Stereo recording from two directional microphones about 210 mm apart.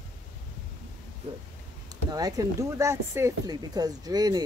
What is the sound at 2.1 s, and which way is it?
Speech, 15° right (ahead or behind).